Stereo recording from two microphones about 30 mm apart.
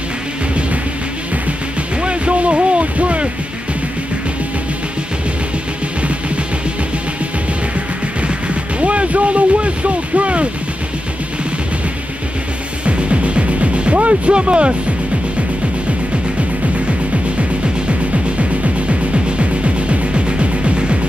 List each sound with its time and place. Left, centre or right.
2.0 s music: right
8.7 s a sound: right
12.8 s music: right
14.3 s speech: right
18.4 s music: right